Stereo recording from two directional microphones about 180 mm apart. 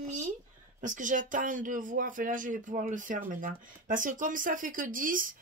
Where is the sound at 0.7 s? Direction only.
45° right (ahead or behind).